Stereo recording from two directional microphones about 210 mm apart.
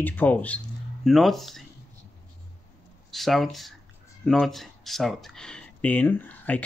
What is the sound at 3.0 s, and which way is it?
Speech, centre (ahead or behind).